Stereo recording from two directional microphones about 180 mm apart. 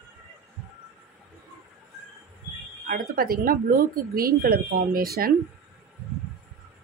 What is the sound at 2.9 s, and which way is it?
Speech, 55° right (ahead or behind).